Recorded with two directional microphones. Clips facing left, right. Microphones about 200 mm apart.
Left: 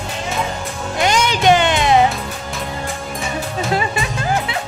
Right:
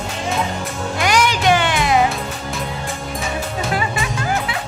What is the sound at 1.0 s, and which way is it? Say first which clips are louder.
Music: left 2 dB; 20° left (ahead or behind).